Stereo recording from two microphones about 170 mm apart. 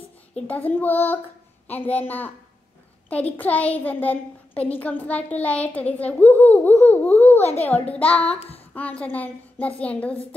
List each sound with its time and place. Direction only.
0.5 s a child's voice: 10° left (ahead or behind)
3.3 s a child's voice: 10° left (ahead or behind)
7.3 s a child's voice: 40° left (ahead or behind)
7.7 s a child's voice: 10° left (ahead or behind)